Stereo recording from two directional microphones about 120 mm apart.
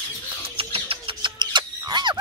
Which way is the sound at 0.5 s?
50° right (ahead or behind).